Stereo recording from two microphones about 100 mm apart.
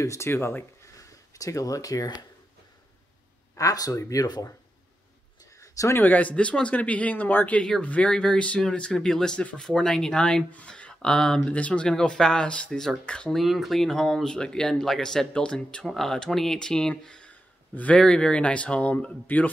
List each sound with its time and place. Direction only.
0.0 s speech: 30° left (ahead or behind)
0.9 s speech: 35° left (ahead or behind)
3.5 s speech: 35° left (ahead or behind)
5.6 s a sound: 30° left (ahead or behind)
6.0 s speech: 15° left (ahead or behind)